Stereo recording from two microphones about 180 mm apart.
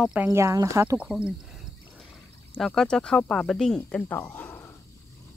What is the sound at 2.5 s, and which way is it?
Speech, 5° left (ahead or behind).